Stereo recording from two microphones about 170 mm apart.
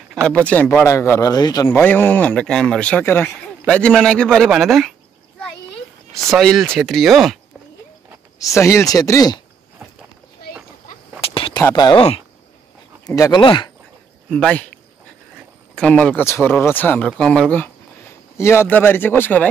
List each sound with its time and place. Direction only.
0.2 s speech: 5° left (ahead or behind)
6.3 s speech: centre (ahead or behind)
8.4 s speech: 20° left (ahead or behind)
11.1 s a sound: 35° left (ahead or behind)
11.7 s speech: 25° left (ahead or behind)
13.0 s speech: 20° left (ahead or behind)
14.3 s speech: 5° left (ahead or behind)
15.7 s speech: 5° left (ahead or behind)